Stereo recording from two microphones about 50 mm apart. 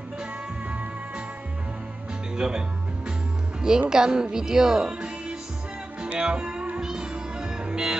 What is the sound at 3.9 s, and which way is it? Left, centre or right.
A woman's voice, centre.